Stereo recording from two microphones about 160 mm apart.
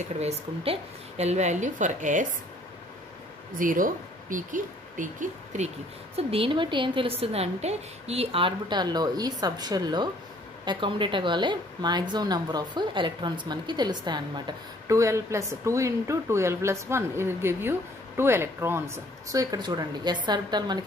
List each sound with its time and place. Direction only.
0.2 s a woman's voice: 40° right (ahead or behind)
3.5 s speech: 55° right (ahead or behind)
6.1 s a woman's voice: 35° right (ahead or behind)